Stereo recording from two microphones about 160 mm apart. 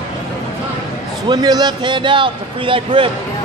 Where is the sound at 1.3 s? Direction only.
25° right (ahead or behind).